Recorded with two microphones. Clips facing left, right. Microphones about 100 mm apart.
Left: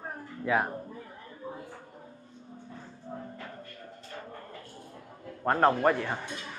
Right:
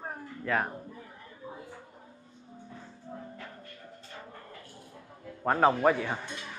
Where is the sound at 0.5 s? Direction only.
10° left (ahead or behind).